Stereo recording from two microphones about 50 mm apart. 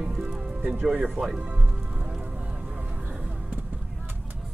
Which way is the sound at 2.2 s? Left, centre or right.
Right.